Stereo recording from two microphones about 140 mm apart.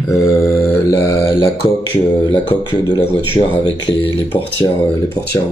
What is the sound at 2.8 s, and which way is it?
Speech, 40° left (ahead or behind).